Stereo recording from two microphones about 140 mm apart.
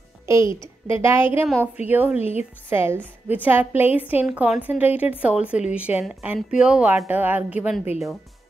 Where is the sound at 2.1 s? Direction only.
50° left (ahead or behind).